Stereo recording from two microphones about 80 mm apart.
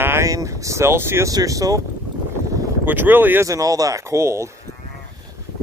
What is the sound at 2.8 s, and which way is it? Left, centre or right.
Speech, right.